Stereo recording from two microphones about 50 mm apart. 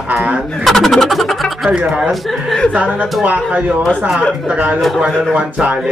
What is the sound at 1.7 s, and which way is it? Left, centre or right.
Speech, right.